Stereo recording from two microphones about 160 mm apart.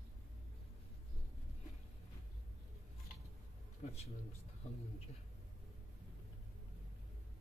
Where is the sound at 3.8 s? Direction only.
40° left (ahead or behind).